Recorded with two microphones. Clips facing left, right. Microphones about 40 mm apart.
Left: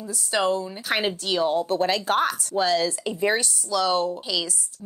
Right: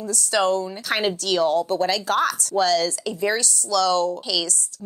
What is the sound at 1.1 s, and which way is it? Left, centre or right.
Speech, right.